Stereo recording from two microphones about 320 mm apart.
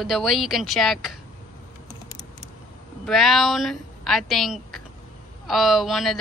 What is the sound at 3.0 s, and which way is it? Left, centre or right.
Speech, centre.